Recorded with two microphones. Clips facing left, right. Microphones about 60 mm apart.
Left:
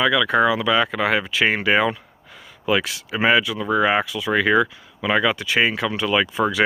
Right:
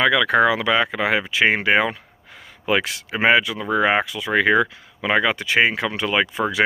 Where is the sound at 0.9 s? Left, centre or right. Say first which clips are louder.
Even; centre.